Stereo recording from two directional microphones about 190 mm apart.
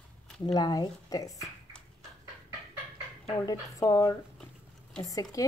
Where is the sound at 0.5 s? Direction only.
20° left (ahead or behind).